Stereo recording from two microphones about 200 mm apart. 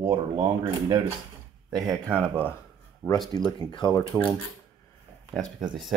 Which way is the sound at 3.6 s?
20° left (ahead or behind).